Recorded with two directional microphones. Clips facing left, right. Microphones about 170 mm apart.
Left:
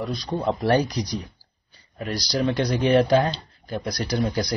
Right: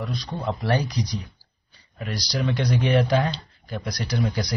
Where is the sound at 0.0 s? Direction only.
40° left (ahead or behind).